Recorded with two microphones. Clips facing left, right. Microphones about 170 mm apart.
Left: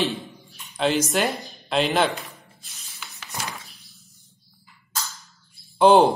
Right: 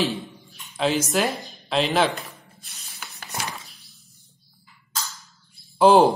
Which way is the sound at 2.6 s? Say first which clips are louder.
Right 3 dB; 55° right (ahead or behind).